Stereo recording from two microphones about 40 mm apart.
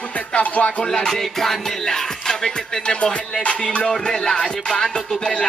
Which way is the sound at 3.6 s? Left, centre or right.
Centre.